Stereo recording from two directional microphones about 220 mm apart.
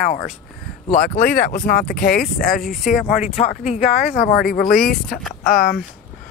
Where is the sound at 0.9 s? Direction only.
40° left (ahead or behind).